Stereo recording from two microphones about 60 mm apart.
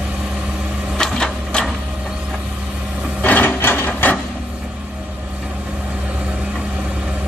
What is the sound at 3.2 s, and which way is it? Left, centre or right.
Wood, left.